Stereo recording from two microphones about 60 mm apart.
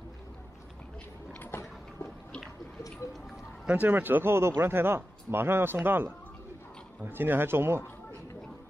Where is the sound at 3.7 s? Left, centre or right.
Right.